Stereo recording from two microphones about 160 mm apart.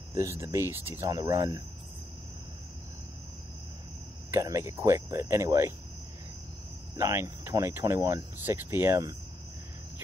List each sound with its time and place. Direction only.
0.1 s speech: 20° right (ahead or behind)
4.3 s speech: 20° right (ahead or behind)
7.0 s speech: 15° right (ahead or behind)